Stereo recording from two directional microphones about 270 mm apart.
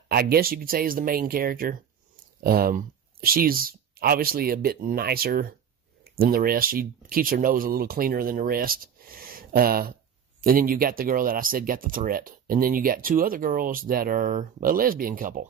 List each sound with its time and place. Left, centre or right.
0.1 s speech: right